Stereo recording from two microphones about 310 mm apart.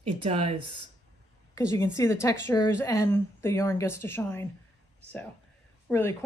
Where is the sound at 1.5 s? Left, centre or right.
Centre.